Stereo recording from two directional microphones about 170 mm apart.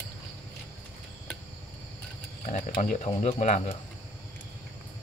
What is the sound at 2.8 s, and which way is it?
Speech, 40° left (ahead or behind).